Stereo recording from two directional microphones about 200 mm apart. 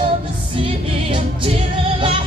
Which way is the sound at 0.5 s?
25° right (ahead or behind).